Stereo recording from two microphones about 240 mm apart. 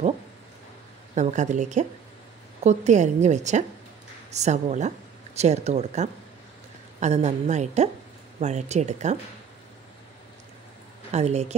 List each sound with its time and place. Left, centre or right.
1.1 s a woman's voice: right
11.1 s a woman's voice: right